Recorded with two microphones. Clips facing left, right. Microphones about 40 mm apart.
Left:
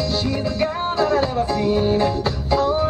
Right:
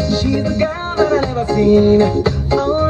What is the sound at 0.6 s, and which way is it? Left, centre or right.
Music, centre.